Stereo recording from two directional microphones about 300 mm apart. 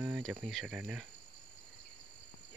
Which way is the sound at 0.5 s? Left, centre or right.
Centre.